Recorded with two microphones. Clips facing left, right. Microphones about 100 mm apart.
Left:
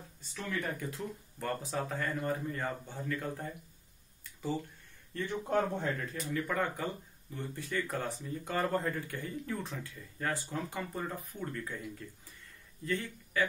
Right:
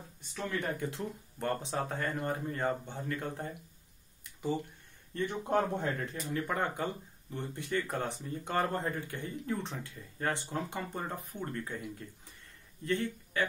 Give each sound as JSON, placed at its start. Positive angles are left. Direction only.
{"t": 0.7, "sound": "speech", "side_deg": -25}
{"t": 4.2, "sound": "a sound", "side_deg": -15}
{"t": 5.1, "sound": "speech", "side_deg": -20}